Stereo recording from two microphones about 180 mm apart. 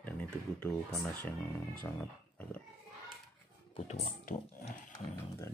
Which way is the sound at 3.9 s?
50° left (ahead or behind).